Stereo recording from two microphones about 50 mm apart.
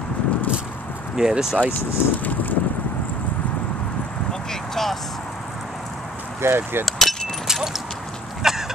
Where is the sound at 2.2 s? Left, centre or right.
Left.